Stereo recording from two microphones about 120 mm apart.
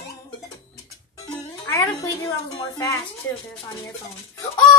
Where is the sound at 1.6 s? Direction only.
25° left (ahead or behind).